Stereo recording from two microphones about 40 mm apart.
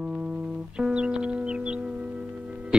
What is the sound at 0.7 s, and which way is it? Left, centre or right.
Music, right.